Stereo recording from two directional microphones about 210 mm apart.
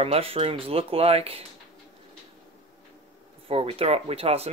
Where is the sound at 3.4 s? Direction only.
25° right (ahead or behind).